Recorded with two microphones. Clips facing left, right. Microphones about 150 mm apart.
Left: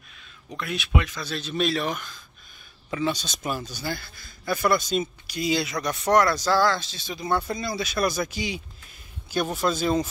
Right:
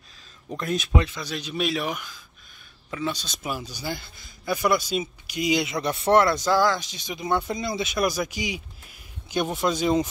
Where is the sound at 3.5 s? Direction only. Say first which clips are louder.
Left 1 dB; 15° right (ahead or behind).